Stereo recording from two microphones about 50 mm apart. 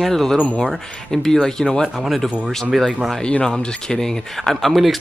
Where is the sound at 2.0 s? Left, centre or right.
Centre.